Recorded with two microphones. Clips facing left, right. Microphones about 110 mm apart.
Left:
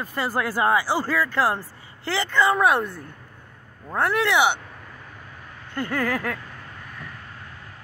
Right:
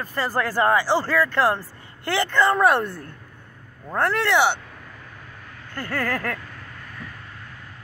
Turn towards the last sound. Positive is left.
turn(degrees=15)  # may be behind; listen again after turning